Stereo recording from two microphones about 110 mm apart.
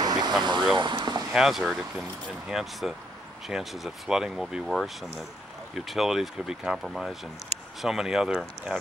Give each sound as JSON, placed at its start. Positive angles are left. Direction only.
{"t": 0.0, "sound": "vehicle", "side_deg": -40}
{"t": 1.3, "sound": "speech", "side_deg": -5}